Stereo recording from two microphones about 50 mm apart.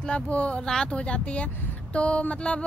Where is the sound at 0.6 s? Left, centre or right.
Centre.